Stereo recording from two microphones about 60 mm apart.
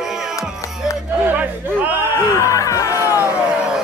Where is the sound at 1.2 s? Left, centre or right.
Right.